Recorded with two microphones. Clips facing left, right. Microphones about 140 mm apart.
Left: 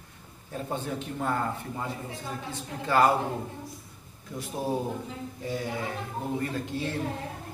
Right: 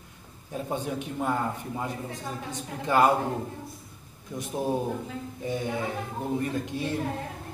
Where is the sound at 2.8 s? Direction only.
20° right (ahead or behind).